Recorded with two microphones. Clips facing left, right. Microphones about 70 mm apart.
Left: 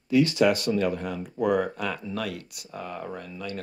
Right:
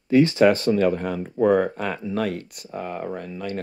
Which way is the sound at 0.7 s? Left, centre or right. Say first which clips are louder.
Right 5 dB; right.